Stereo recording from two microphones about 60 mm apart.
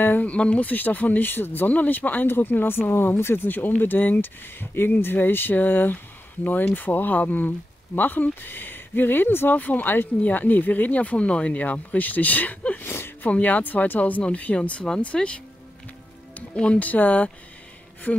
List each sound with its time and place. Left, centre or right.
0.0 s speech: left
0.3 s speech: left
12.8 s a sound: left
13.3 s speech: left